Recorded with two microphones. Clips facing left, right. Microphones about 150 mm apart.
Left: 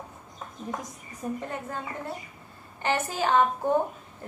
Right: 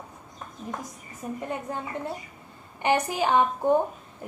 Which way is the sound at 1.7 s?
20° right (ahead or behind).